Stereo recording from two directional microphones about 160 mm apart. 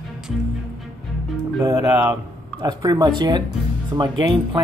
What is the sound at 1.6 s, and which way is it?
Speech, 20° right (ahead or behind).